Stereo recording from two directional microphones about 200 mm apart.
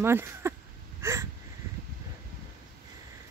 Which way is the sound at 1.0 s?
15° right (ahead or behind).